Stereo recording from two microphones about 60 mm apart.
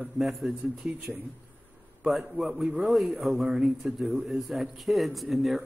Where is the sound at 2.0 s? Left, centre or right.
Centre.